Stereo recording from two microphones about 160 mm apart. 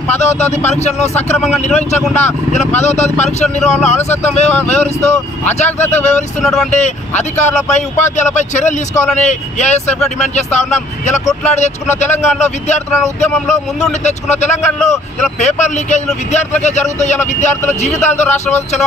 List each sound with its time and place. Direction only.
0.1 s speech: 45° left (ahead or behind)
6.4 s speech: 5° left (ahead or behind)
6.7 s speech: 45° left (ahead or behind)
14.3 s speech: 45° left (ahead or behind)